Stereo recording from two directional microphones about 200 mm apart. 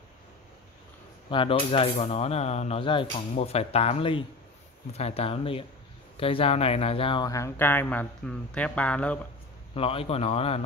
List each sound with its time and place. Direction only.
1.3 s a man's voice: 25° left (ahead or behind); by 9.3 s 5° left (ahead or behind)
9.8 s a man's voice: 30° left (ahead or behind)